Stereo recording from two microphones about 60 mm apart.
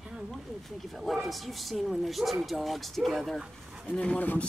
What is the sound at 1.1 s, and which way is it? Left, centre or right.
Speech, centre.